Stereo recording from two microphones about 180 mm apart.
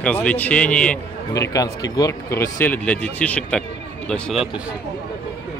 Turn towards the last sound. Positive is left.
turn(degrees=0)  # may be behind; listen again after turning